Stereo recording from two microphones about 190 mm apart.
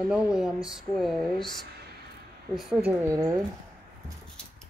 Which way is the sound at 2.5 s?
Centre (ahead or behind).